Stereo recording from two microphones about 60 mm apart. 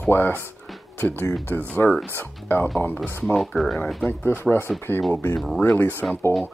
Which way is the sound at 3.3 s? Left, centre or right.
Centre.